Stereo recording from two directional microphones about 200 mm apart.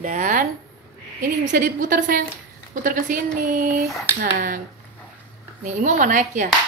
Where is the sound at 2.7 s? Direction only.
40° right (ahead or behind).